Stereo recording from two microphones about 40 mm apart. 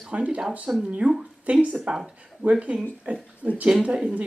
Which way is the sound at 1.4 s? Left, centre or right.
Right.